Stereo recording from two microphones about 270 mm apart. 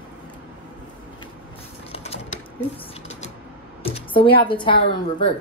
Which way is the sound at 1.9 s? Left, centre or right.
Left.